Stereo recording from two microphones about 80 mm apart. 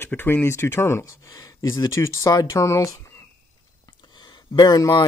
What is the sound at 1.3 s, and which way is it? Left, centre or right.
Speech, left.